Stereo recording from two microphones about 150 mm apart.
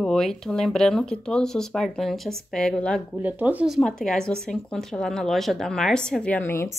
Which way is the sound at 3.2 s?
10° right (ahead or behind).